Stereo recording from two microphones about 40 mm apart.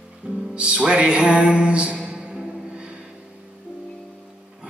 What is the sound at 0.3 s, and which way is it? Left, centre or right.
Music, right.